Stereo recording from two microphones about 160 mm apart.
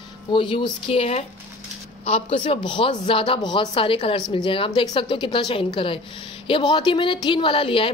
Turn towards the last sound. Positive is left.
turn(degrees=35)  # may be behind; listen again after turning